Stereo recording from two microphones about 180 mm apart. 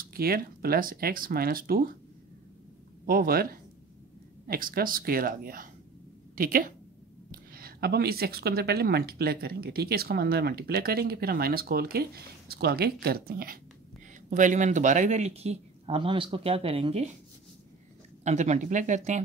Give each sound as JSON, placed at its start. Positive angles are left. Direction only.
{"t": 0.1, "sound": "speech", "side_deg": -55}
{"t": 3.1, "sound": "speech", "side_deg": -55}
{"t": 4.5, "sound": "speech", "side_deg": -55}
{"t": 14.3, "sound": "speech", "side_deg": -45}
{"t": 18.2, "sound": "speech", "side_deg": -40}